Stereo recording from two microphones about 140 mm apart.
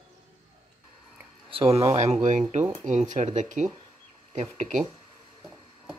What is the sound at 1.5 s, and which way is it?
Speech, 45° right (ahead or behind).